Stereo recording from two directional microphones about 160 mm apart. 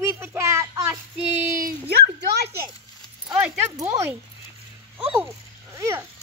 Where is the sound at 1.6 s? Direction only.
90° right.